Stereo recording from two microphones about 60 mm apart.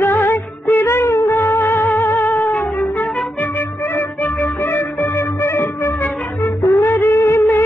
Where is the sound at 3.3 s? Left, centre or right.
Left.